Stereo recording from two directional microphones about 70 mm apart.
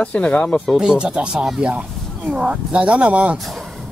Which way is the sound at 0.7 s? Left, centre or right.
Centre.